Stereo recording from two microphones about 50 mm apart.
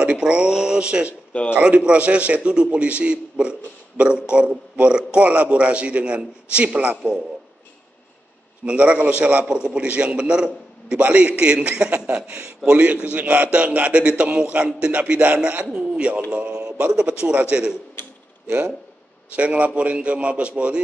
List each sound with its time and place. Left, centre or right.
0.0 s a man's voice: right
8.6 s a man's voice: right
11.0 s a man's voice: right
19.3 s a man's voice: right